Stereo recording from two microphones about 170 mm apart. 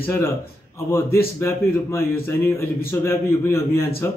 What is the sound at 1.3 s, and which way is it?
A man's voice, 15° left (ahead or behind).